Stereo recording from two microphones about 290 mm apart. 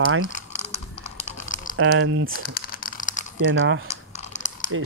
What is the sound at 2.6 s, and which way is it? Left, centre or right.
Tearing, left.